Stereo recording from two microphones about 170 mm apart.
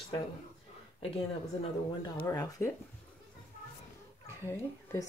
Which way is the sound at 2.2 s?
15° left (ahead or behind).